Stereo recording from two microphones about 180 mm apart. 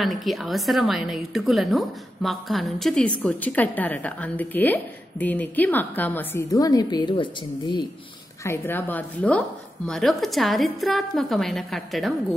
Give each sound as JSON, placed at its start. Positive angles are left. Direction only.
{"t": 0.0, "sound": "a woman's voice", "side_deg": 0}
{"t": 8.5, "sound": "a woman's voice", "side_deg": 10}